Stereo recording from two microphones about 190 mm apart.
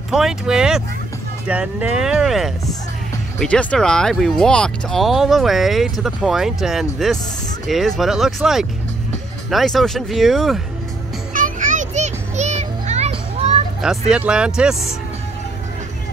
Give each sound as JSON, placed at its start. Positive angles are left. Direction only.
{"t": 0.1, "sound": "speech", "side_deg": -5}
{"t": 11.3, "sound": "music", "side_deg": -45}
{"t": 13.7, "sound": "speech", "side_deg": -5}